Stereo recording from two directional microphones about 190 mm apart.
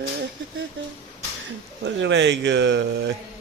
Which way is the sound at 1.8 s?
70° right (ahead or behind).